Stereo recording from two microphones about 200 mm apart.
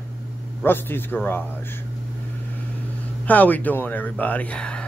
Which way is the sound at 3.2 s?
10° left (ahead or behind).